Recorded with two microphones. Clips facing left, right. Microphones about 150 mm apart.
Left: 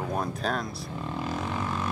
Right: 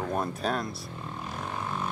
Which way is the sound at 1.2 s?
90° left.